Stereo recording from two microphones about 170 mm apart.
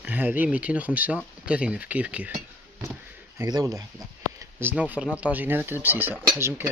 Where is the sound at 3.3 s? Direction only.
20° right (ahead or behind).